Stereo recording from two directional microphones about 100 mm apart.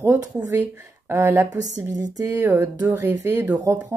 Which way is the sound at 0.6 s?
25° right (ahead or behind).